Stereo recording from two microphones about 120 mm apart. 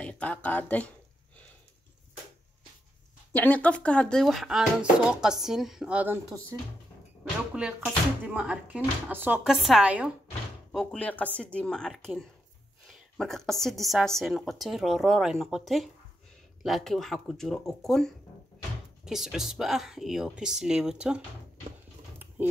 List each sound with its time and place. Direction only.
0.0 s speech: 10° left (ahead or behind)
3.3 s a woman's voice: 15° left (ahead or behind); by 6.1 s 10° right (ahead or behind)
7.5 s speech: 10° right (ahead or behind)
9.4 s a woman's voice: 5° right (ahead or behind)
10.7 s a woman's voice: 5° left (ahead or behind)
22.4 s speech: 15° right (ahead or behind)